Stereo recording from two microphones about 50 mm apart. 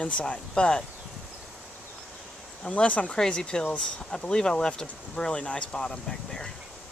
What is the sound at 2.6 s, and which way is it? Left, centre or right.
Speech, left.